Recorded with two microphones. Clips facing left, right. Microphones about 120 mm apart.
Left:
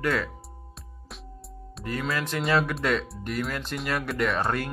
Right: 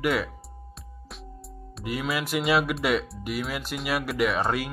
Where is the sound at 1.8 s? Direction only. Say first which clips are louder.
Right 1 dB; 10° right (ahead or behind).